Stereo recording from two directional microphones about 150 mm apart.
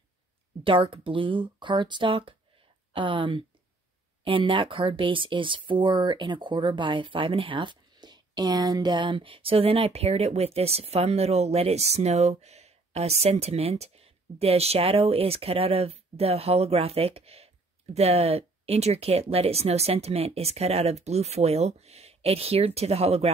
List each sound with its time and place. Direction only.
0.7 s speech: 35° right (ahead or behind)